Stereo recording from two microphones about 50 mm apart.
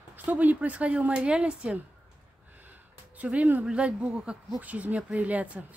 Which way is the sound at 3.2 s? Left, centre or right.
Right.